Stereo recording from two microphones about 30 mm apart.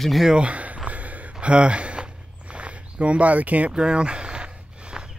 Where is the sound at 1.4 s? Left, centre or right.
Right.